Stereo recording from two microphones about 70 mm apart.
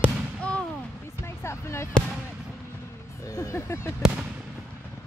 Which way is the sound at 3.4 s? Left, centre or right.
Left.